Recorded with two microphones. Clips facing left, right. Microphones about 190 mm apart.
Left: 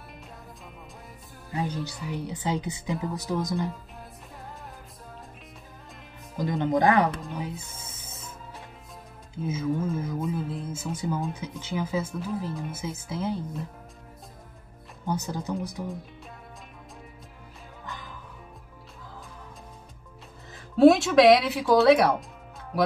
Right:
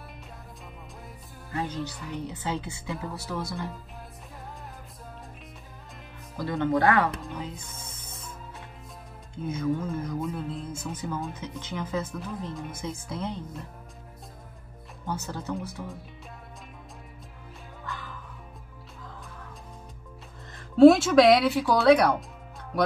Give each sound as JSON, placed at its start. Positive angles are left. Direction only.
{"t": 1.6, "sound": "speech", "side_deg": 10}
{"t": 6.3, "sound": "speech", "side_deg": 15}
{"t": 7.2, "sound": "speech", "side_deg": 0}
{"t": 7.4, "sound": "music", "side_deg": 10}
{"t": 9.3, "sound": "speech", "side_deg": 5}
{"t": 15.0, "sound": "speech", "side_deg": 15}
{"t": 17.8, "sound": "music", "side_deg": 15}
{"t": 20.5, "sound": "speech", "side_deg": 0}